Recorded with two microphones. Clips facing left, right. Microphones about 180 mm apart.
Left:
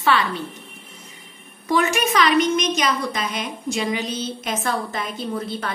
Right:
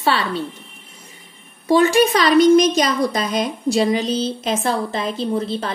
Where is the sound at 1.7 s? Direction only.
30° right (ahead or behind).